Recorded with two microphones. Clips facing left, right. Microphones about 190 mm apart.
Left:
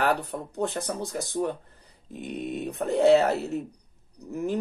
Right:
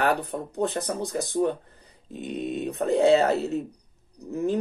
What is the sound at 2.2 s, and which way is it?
Speech, 20° right (ahead or behind).